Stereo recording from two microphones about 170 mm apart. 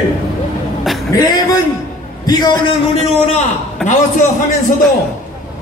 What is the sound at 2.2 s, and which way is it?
Speech, 25° left (ahead or behind).